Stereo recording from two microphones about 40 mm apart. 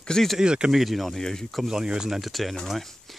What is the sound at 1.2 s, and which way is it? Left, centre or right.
Speech, centre.